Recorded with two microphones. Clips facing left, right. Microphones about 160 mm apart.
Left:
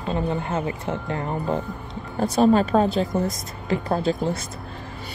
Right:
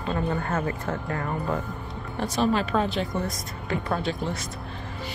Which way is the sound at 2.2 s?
40° left (ahead or behind).